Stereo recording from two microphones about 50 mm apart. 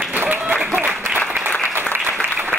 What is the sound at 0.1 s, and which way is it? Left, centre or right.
Applause, right.